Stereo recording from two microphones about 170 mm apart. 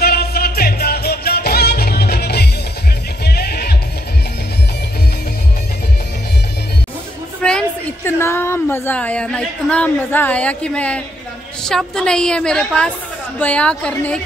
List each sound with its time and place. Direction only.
0.0 s music: 65° left (ahead or behind)
7.4 s a sound: 5° left (ahead or behind)
8.2 s a woman's voice: 15° left (ahead or behind)